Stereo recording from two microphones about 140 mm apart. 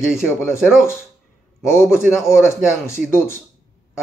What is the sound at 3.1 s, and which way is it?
Speech, 15° left (ahead or behind).